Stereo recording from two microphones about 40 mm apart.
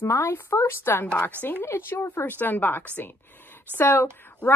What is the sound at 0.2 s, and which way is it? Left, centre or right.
A woman's voice, left.